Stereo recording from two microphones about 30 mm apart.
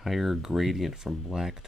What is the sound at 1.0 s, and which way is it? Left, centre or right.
Speech, centre.